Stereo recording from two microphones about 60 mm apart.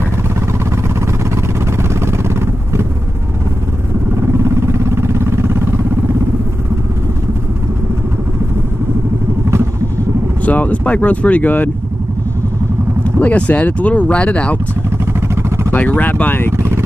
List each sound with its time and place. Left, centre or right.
0.5 s a sound: right
4.2 s a sound: right
10.4 s speech: left
13.2 s speech: left
15.1 s vehicle: right
15.7 s speech: left
16.5 s vehicle: right